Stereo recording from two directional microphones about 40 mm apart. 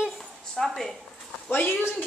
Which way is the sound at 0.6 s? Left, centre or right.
Centre.